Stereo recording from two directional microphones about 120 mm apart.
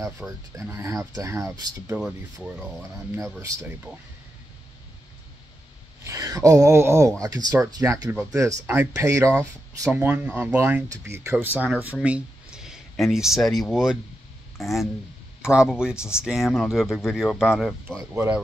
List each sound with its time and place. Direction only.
0.2 s speech: 15° right (ahead or behind)
2.0 s speech: 5° right (ahead or behind)
6.0 s speech: 25° right (ahead or behind); by 18.0 s 5° right (ahead or behind)
18.1 s speech: 20° right (ahead or behind)